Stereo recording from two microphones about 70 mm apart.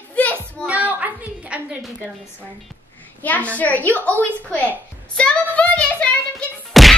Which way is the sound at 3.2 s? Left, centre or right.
Left.